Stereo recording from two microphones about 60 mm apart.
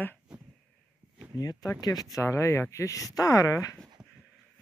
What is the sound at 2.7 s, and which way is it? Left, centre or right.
Speech, left.